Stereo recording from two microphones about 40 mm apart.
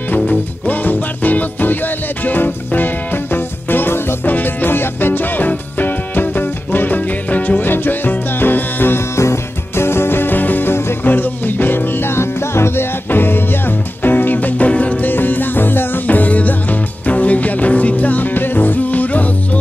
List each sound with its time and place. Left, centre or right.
0.7 s music: left
7.6 s music: left
9.8 s music: left
14.7 s music: left
15.0 s music: left
16.1 s music: left